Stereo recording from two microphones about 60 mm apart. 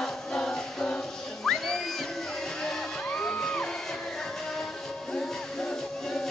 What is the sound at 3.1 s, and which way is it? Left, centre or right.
Music, centre.